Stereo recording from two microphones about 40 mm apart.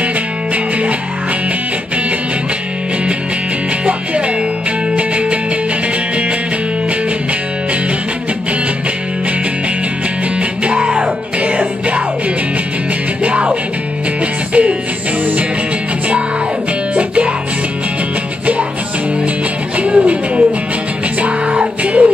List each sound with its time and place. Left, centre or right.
4.9 s music: right
10.6 s music: right
13.2 s music: right
16.9 s music: right
19.8 s music: right